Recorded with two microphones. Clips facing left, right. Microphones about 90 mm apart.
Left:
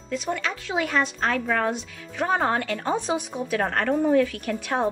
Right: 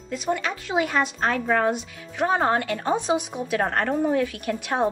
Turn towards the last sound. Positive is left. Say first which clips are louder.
# right 1 dB
turn(degrees=-20)  # may be behind; listen again after turning